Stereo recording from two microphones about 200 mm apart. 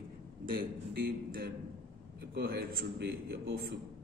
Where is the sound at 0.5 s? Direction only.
50° right (ahead or behind).